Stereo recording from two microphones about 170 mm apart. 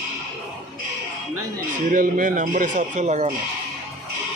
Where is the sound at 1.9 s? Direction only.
50° right (ahead or behind).